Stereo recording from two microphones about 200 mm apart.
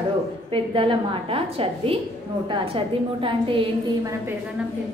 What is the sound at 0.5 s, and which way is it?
A woman's voice, 25° right (ahead or behind).